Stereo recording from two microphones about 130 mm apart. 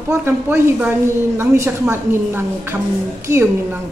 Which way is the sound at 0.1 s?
20° right (ahead or behind).